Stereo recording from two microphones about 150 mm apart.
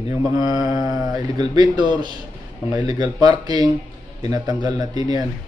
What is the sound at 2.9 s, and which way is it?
Speech, 30° right (ahead or behind).